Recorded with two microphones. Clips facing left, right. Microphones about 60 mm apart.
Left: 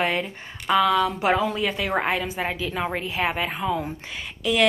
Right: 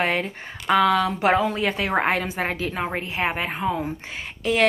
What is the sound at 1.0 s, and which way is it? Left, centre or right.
A woman's voice, right.